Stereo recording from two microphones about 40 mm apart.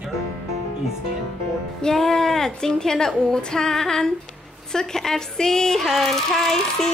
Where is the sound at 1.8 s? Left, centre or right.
Centre.